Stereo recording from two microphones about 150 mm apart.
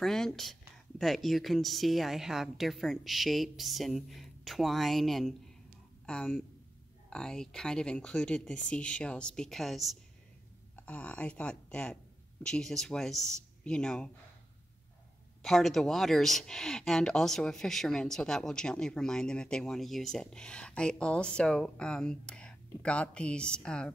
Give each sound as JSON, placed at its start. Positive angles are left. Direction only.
{"t": 0.0, "sound": "speech", "side_deg": 0}
{"t": 15.4, "sound": "speech", "side_deg": 0}